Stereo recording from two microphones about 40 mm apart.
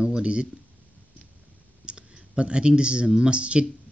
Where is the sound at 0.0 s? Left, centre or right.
Right.